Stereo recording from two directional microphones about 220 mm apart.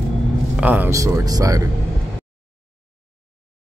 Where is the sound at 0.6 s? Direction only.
5° right (ahead or behind).